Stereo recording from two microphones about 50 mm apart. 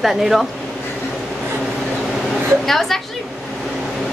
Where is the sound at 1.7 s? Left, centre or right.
Centre.